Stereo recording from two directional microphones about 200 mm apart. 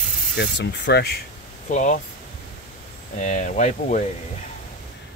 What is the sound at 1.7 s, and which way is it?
Speech, 40° left (ahead or behind).